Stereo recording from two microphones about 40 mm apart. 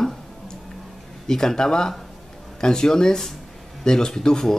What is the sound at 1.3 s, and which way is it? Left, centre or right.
Speech, centre.